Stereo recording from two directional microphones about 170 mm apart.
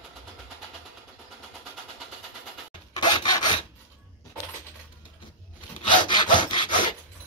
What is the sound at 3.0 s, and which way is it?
Rub, 25° left (ahead or behind).